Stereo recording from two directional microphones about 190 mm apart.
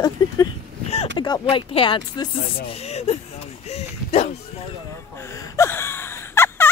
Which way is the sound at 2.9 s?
35° left (ahead or behind).